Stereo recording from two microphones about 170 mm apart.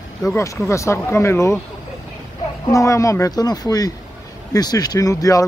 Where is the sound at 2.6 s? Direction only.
20° left (ahead or behind).